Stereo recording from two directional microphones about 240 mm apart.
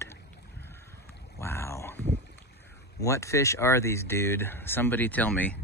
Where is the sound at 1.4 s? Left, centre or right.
Centre.